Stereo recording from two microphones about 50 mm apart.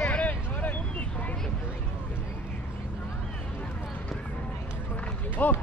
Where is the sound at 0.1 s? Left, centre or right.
Left.